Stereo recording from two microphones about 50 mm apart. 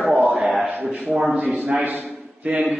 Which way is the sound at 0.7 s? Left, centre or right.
Centre.